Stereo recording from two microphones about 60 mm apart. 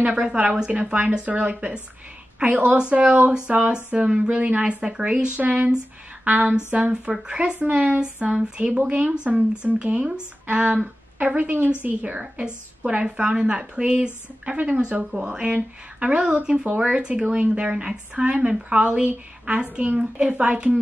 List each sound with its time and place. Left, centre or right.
0.0 s a woman's voice: centre
6.2 s a sound: right
6.5 s a woman's voice: centre